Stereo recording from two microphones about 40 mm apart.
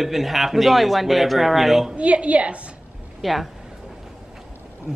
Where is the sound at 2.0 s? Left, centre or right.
Right.